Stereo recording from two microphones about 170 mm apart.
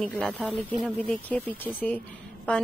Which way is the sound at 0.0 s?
5° left (ahead or behind).